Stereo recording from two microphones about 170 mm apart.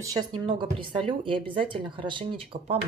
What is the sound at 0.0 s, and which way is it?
Speech, 20° right (ahead or behind).